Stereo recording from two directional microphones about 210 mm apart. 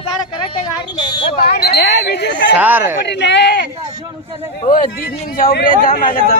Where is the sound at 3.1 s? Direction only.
55° left (ahead or behind).